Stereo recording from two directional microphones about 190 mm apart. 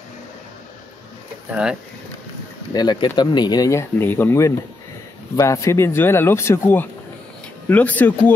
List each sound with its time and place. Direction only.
1.5 s speech: 5° right (ahead or behind)
2.7 s speech: 20° left (ahead or behind)